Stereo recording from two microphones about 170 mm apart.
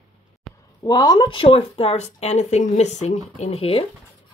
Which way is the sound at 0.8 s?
20° left (ahead or behind).